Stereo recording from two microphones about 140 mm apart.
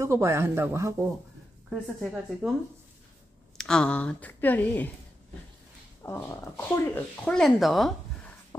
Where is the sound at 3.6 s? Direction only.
5° left (ahead or behind).